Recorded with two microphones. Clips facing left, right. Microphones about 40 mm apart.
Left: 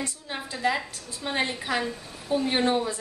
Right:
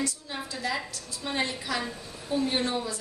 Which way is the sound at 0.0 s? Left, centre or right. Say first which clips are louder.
Even; left.